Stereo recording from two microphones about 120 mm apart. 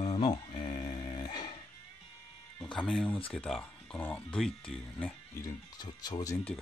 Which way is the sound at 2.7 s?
5° left (ahead or behind).